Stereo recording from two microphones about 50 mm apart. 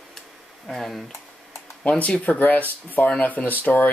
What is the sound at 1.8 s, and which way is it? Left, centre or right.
Speech, left.